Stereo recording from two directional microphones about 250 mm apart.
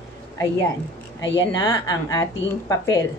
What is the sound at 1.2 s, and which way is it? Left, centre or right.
Speech, left.